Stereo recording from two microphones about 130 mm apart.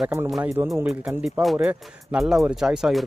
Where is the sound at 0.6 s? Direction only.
25° right (ahead or behind).